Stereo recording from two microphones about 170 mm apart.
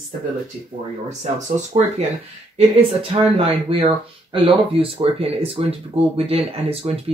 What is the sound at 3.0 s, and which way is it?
Speech, 35° right (ahead or behind).